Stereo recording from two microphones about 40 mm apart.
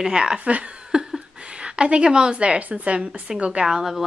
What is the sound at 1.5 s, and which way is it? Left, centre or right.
A woman's voice, right.